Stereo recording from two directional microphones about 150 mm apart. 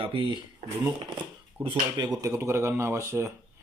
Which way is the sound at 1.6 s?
30° right (ahead or behind).